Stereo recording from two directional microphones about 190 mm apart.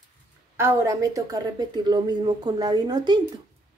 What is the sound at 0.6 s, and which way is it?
A woman's voice, 15° right (ahead or behind).